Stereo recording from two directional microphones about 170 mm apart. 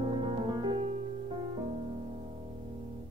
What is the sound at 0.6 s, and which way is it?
Music, 30° right (ahead or behind).